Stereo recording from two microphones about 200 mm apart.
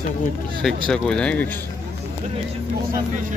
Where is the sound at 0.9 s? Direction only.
5° left (ahead or behind).